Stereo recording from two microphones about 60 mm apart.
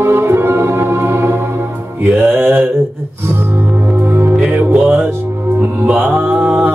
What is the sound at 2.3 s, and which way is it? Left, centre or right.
Mantra, right.